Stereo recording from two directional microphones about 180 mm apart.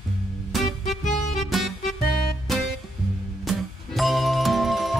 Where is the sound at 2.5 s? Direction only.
Centre (ahead or behind).